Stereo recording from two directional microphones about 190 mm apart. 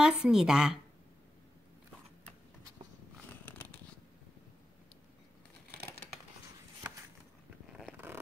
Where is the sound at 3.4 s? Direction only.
10° left (ahead or behind).